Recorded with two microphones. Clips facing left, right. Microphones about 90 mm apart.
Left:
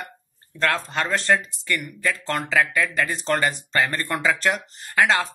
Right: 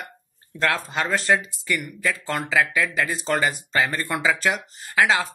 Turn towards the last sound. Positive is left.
turn(degrees=0)  # may be behind; listen again after turning